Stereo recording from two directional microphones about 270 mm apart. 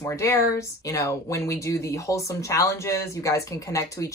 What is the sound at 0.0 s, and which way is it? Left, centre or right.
Speech, centre.